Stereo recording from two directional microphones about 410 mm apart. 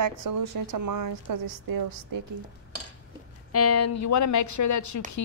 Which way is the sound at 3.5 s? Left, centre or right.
Left.